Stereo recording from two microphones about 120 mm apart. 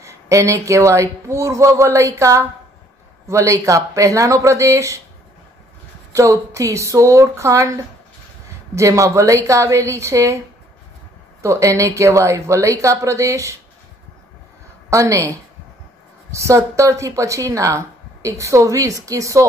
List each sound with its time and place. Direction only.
0.0 s speech: 25° right (ahead or behind)
6.1 s speech: 25° right (ahead or behind)
8.7 s speech: 25° right (ahead or behind)
11.4 s speech: 25° right (ahead or behind)
14.9 s speech: 25° right (ahead or behind)
16.3 s speech: 25° right (ahead or behind)